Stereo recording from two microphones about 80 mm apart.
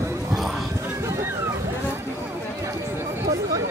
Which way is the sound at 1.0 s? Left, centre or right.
Right.